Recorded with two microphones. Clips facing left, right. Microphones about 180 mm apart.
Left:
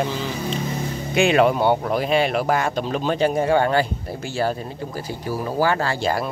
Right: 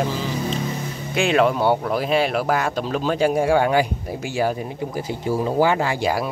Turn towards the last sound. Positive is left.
turn(degrees=-10)  # may be behind; listen again after turning